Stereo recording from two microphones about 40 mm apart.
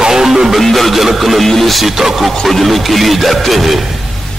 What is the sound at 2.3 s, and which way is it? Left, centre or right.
Speech, centre.